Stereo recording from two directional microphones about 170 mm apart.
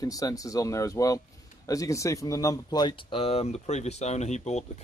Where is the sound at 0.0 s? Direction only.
20° left (ahead or behind).